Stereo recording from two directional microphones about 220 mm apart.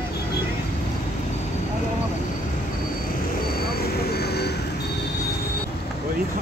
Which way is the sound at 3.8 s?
45° left (ahead or behind).